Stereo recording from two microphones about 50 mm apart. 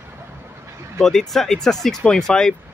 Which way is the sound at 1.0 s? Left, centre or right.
Centre.